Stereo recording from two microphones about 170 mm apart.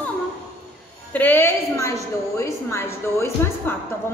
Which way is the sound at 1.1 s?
10° left (ahead or behind).